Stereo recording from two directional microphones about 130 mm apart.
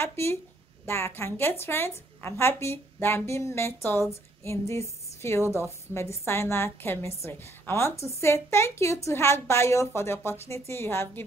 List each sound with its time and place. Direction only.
0.0 s a woman's voice: 20° left (ahead or behind)